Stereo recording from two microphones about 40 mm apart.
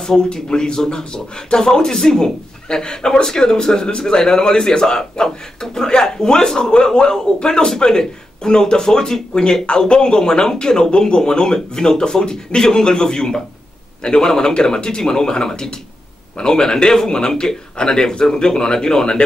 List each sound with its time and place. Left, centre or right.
0.0 s a man's voice: centre